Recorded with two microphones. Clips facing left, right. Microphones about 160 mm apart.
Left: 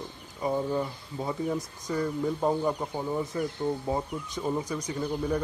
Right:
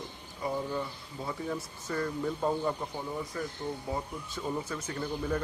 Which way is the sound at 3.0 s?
30° left (ahead or behind).